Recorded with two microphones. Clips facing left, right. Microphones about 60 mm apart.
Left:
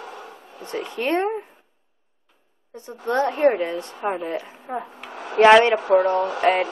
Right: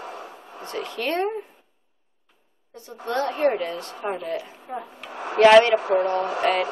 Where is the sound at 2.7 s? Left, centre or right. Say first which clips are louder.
Left 4 dB; left.